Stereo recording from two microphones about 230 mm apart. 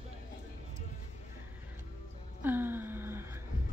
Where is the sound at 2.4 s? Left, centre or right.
Centre.